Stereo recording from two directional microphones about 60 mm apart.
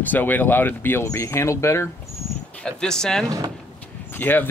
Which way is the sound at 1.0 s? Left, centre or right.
Left.